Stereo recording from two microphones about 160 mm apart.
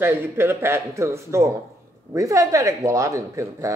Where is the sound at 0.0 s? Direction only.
15° right (ahead or behind).